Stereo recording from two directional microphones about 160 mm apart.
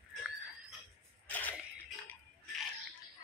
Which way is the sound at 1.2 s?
10° left (ahead or behind).